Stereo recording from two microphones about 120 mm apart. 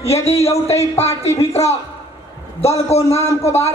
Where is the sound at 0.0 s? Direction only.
60° left (ahead or behind).